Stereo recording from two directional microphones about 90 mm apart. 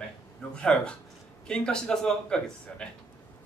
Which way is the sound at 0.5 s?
10° left (ahead or behind).